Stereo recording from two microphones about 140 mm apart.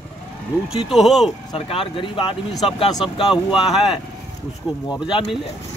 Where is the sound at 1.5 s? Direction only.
40° left (ahead or behind).